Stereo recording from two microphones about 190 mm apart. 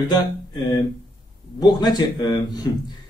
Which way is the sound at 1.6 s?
20° left (ahead or behind).